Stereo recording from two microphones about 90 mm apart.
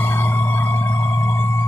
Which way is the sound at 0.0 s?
20° left (ahead or behind).